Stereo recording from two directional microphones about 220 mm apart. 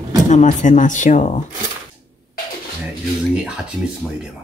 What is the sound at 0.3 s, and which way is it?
Speech, 35° left (ahead or behind).